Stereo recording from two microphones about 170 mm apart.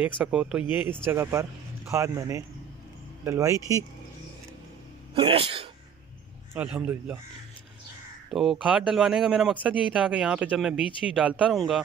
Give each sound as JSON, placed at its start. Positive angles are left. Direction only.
{"t": 0.0, "sound": "speech", "side_deg": -5}
{"t": 5.1, "sound": "speech", "side_deg": -35}
{"t": 6.5, "sound": "speech", "side_deg": -5}
{"t": 8.3, "sound": "speech", "side_deg": -5}